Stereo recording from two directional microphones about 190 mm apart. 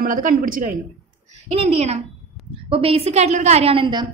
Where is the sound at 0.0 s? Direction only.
45° right (ahead or behind).